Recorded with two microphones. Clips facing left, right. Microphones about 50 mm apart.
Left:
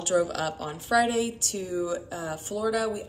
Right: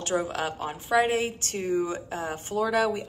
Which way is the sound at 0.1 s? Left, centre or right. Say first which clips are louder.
Left 3 dB; right.